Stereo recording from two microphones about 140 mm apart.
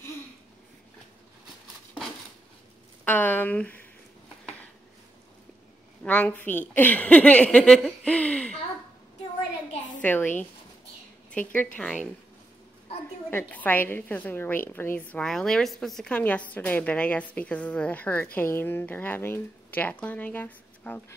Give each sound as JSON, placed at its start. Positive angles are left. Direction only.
{"t": 3.1, "sound": "a woman's voice", "side_deg": 15}
{"t": 6.0, "sound": "a woman's voice", "side_deg": 10}
{"t": 10.0, "sound": "a woman's voice", "side_deg": 10}
{"t": 13.3, "sound": "a woman's voice", "side_deg": 15}
{"t": 15.1, "sound": "a woman's voice", "side_deg": 5}